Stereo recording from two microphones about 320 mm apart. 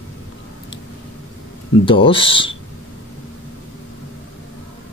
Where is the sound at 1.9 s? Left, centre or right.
Centre.